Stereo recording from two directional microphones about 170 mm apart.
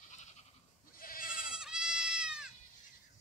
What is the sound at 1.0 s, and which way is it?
Goat, 55° left (ahead or behind).